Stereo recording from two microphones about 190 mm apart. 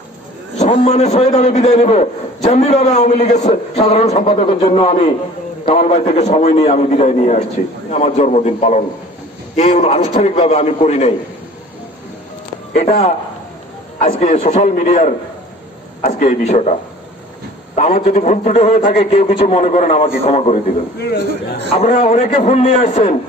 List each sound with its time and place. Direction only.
0.6 s a man's voice: 35° left (ahead or behind)
12.7 s a man's voice: 40° left (ahead or behind)
17.7 s a man's voice: 35° left (ahead or behind)
21.6 s a man's voice: 30° left (ahead or behind)